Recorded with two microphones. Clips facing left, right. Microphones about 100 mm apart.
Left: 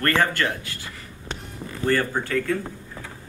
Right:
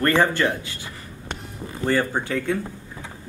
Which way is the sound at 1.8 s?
15° right (ahead or behind).